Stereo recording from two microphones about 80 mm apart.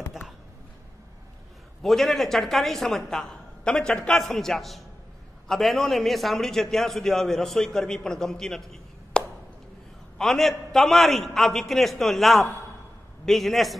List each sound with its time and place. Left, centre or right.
1.8 s a man's voice: centre